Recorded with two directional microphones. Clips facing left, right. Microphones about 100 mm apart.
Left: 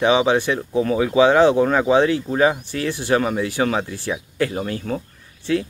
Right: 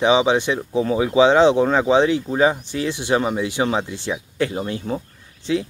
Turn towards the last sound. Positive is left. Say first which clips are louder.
# left 1 dB
turn(degrees=-20)  # may be behind; listen again after turning